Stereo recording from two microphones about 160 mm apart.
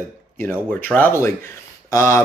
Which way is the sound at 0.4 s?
10° left (ahead or behind).